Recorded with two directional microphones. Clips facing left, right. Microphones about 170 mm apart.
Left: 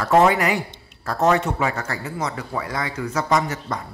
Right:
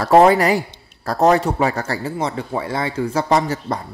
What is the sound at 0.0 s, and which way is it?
A man's voice, 35° right (ahead or behind).